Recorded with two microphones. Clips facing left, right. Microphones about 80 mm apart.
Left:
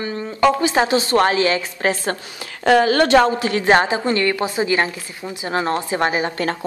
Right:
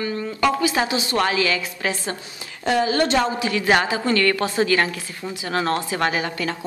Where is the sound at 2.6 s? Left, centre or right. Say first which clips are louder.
Left 5 dB; left.